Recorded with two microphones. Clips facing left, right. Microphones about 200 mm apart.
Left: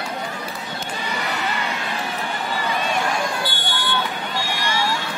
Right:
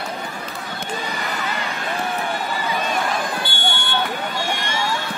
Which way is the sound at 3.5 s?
25° right (ahead or behind).